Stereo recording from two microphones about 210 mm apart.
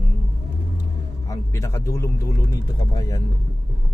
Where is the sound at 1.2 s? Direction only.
15° left (ahead or behind).